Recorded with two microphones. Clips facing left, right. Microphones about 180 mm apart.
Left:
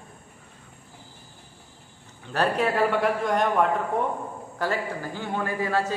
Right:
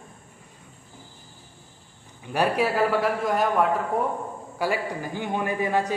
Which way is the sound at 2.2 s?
10° right (ahead or behind).